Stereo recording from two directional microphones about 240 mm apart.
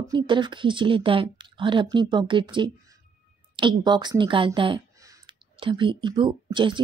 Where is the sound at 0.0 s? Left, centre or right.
Centre.